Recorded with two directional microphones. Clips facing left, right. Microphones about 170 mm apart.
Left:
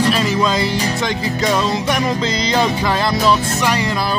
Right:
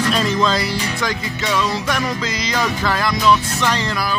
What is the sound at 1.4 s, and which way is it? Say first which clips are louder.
Music: left 3 dB; 40° left (ahead or behind).